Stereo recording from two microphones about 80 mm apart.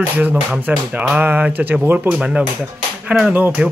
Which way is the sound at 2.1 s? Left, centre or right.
Centre.